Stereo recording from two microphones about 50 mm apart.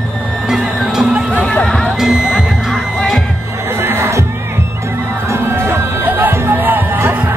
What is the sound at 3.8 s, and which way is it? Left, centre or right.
Crowd, right.